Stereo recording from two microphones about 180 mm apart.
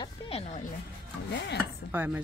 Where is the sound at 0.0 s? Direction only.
35° left (ahead or behind).